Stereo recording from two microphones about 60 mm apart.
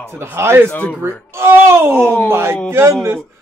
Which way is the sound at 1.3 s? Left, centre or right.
Right.